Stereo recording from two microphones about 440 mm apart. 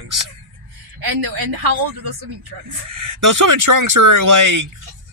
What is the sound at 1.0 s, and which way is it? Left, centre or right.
Speech, right.